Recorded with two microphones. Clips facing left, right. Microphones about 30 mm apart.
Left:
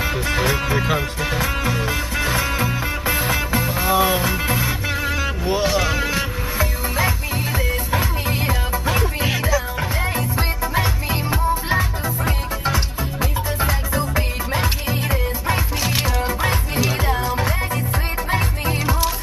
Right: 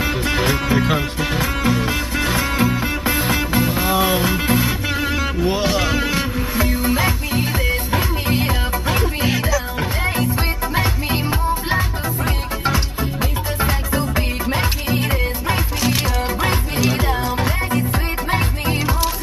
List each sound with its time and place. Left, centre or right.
0.3 s music: centre
8.4 s music: centre
15.8 s music: centre
16.9 s music: centre
18.9 s music: centre